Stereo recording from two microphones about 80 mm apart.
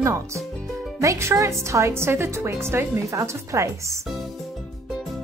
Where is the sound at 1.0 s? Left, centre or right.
Right.